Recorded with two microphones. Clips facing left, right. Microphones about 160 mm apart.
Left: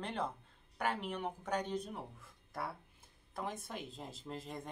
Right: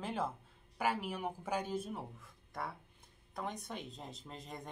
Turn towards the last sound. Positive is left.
turn(degrees=0)  # may be behind; listen again after turning